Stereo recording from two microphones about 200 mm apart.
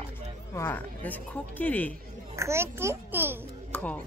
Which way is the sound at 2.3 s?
15° right (ahead or behind).